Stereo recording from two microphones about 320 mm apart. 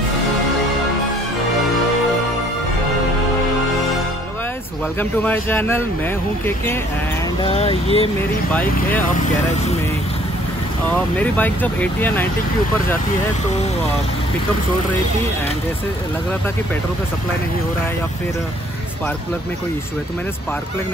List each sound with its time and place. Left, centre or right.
5.2 s speech: centre
7.4 s speech: centre
8.5 s speech: centre
9.3 s speech: left
10.9 s speech: centre